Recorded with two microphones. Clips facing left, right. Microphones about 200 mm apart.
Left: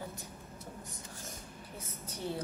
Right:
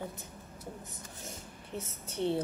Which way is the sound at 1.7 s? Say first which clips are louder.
Right 9 dB; 25° right (ahead or behind).